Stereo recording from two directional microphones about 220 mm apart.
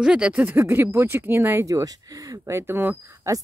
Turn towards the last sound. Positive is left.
turn(degrees=-15)  # may be behind; listen again after turning